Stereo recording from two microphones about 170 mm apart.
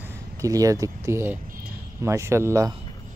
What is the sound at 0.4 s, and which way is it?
Speech, 20° right (ahead or behind).